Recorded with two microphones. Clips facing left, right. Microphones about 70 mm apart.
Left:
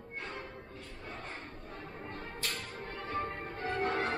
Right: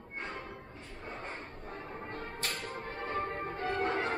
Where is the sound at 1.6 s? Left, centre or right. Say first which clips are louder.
Right 4 dB; right.